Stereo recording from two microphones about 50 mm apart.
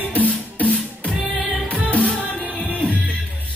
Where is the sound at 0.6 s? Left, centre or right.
Left.